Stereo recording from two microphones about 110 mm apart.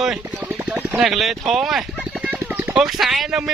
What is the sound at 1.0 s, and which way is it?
Speech, centre (ahead or behind).